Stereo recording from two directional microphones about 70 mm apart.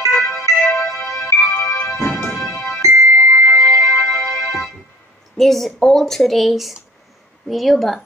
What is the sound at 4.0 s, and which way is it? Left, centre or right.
Music, left.